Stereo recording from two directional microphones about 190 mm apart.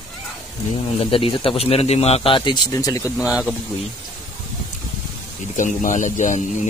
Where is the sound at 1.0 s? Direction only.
30° left (ahead or behind).